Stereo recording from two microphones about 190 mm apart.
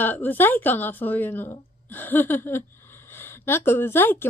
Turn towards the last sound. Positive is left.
turn(degrees=10)  # may be behind; listen again after turning